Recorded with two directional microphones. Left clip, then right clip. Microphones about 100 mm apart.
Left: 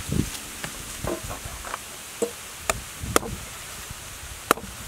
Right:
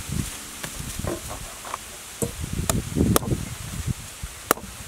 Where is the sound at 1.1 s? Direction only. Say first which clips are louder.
Left 1 dB; 15° right (ahead or behind).